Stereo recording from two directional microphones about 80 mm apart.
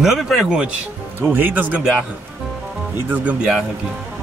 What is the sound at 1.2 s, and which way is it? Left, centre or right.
Speech, right.